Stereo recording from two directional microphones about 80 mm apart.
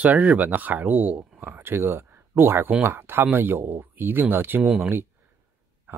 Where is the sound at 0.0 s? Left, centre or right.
Centre.